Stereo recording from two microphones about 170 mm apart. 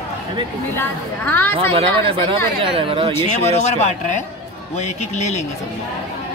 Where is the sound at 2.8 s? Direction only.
30° right (ahead or behind).